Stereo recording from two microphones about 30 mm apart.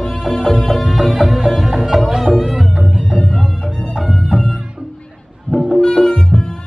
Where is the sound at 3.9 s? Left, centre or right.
Centre.